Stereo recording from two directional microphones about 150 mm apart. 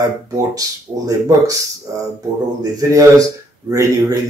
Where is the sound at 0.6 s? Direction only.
20° right (ahead or behind).